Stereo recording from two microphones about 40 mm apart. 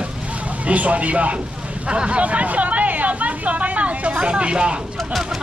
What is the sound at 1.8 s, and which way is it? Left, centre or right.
Vehicle, right.